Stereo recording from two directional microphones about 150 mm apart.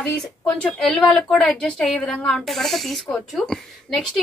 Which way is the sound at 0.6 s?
10° left (ahead or behind).